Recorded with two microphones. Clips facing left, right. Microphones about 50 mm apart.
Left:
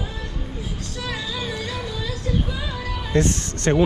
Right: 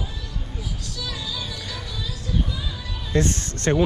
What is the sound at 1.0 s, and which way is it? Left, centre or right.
Music, left.